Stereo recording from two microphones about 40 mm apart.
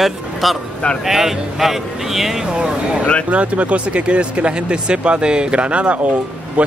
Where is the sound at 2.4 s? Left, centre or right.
Right.